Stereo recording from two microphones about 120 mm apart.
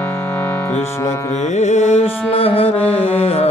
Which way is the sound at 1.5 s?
65° left (ahead or behind).